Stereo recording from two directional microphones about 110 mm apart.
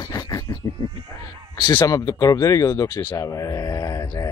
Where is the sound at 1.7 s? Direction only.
30° left (ahead or behind).